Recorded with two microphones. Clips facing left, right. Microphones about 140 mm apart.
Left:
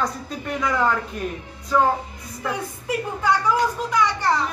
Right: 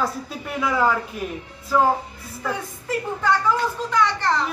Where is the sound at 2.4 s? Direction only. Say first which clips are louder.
Left 1 dB; 10° left (ahead or behind).